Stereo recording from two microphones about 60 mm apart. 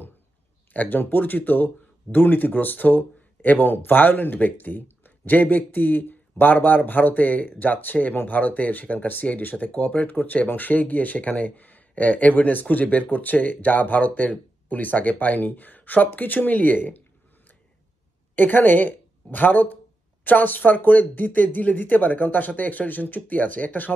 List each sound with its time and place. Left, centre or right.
0.7 s speech: left
18.3 s speech: left